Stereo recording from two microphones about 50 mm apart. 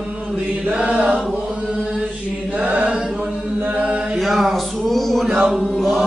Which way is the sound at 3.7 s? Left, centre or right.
Right.